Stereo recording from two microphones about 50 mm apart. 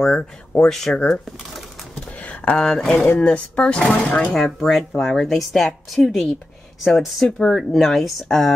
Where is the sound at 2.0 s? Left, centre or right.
Left.